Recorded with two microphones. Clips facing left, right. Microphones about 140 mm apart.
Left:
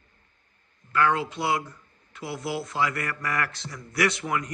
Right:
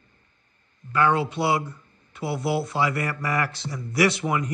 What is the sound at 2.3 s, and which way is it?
A man's voice, 30° right (ahead or behind).